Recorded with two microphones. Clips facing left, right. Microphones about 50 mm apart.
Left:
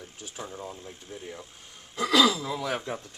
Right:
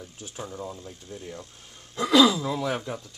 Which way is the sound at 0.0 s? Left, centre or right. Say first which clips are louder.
Right 2 dB; left.